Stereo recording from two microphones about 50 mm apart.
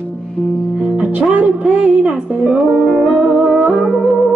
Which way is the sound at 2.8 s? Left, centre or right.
Centre.